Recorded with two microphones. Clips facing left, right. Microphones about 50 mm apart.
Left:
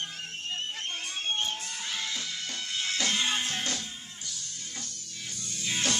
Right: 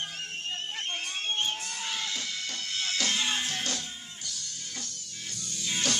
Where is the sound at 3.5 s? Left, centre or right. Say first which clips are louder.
Even; left.